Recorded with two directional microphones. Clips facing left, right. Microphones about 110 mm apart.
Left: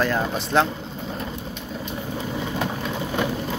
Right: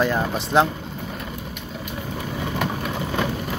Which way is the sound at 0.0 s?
10° right (ahead or behind).